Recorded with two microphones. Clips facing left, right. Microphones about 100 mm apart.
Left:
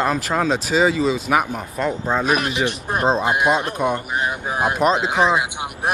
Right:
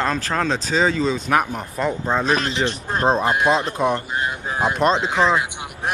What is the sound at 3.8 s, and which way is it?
Speech, 5° left (ahead or behind).